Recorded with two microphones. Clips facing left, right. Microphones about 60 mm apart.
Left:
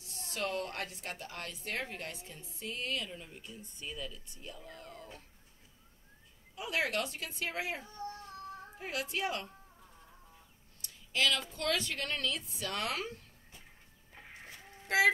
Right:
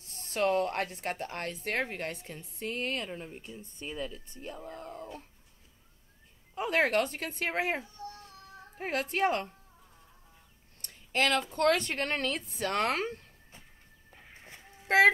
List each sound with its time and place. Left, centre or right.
0.0 s a woman's voice: right
6.5 s a woman's voice: right
10.8 s a sound: right
11.5 s speech: right